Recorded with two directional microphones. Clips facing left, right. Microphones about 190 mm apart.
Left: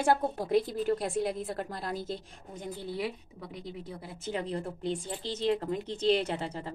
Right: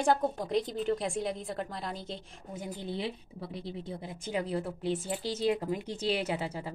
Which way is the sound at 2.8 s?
25° right (ahead or behind).